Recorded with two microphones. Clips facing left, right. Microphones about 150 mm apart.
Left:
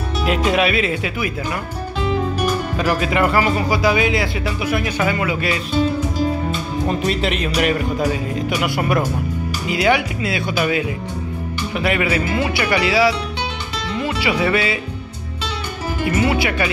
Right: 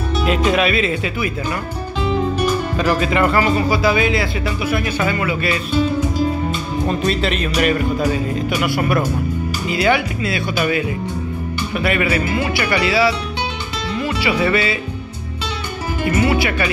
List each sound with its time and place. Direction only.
0.2 s speech: 10° left (ahead or behind)
2.3 s speech: 10° left (ahead or behind)
6.9 s speech: 15° left (ahead or behind)
12.3 s speech: 25° left (ahead or behind)
12.6 s speech: 15° left (ahead or behind)
13.9 s music: 15° left (ahead or behind)
16.2 s speech: 20° left (ahead or behind)